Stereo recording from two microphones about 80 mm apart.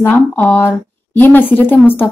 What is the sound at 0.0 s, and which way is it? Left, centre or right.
A woman's voice, left.